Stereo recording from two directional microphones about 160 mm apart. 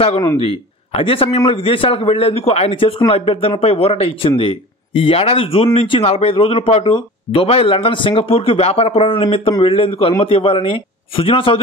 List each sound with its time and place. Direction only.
0.4 s a man's voice: 35° left (ahead or behind)